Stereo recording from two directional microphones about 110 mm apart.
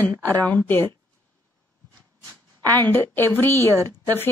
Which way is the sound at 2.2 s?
15° left (ahead or behind).